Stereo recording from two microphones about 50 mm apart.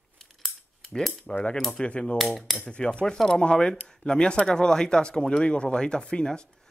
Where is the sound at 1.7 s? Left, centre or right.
Left.